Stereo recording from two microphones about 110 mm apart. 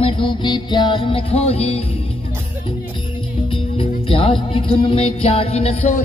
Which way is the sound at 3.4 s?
55° left (ahead or behind).